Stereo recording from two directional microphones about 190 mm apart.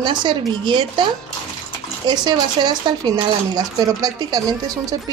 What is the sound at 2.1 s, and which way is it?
Speech, 20° right (ahead or behind).